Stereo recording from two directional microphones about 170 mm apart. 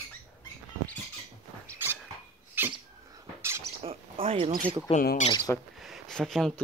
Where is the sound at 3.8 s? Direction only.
35° right (ahead or behind).